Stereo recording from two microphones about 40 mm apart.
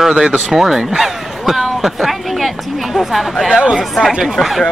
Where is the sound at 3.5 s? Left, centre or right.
Centre.